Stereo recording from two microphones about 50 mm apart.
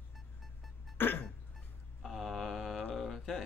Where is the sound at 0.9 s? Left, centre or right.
Left.